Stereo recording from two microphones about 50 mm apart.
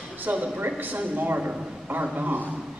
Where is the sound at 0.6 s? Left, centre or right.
Right.